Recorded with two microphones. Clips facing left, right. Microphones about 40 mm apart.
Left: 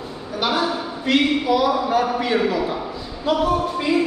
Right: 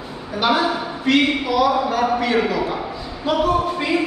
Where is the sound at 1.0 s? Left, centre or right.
Centre.